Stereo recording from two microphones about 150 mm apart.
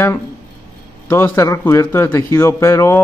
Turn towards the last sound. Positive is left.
turn(degrees=15)  # may be behind; listen again after turning